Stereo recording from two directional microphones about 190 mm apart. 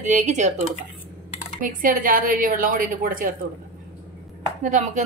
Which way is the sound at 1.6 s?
45° right (ahead or behind).